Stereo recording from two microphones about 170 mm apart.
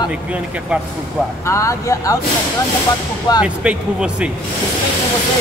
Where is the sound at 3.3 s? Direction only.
25° left (ahead or behind).